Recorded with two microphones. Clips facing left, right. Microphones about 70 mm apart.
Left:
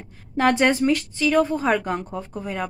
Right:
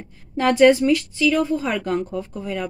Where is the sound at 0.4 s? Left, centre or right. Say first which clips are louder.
Right 4 dB; left.